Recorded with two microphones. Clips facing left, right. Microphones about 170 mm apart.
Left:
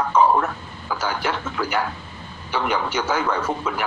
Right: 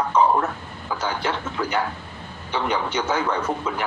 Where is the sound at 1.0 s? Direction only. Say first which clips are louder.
Left 1 dB; 25° right (ahead or behind).